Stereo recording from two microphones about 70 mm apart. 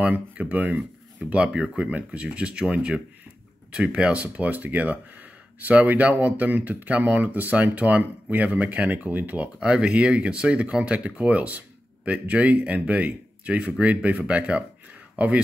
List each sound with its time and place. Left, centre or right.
0.0 s speech: right